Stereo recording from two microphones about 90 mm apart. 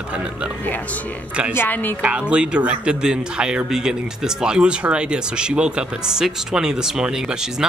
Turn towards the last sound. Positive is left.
turn(degrees=-5)  # may be behind; listen again after turning